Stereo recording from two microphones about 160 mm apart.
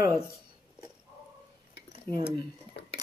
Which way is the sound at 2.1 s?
30° right (ahead or behind).